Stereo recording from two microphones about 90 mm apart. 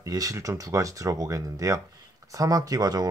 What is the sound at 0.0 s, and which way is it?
Speech, 40° right (ahead or behind).